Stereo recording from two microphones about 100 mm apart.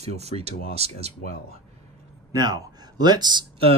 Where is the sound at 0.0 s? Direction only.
90° right.